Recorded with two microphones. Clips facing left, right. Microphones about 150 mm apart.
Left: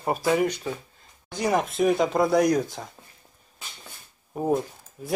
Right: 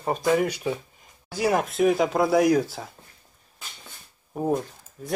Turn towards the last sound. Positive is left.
turn(degrees=5)  # may be behind; listen again after turning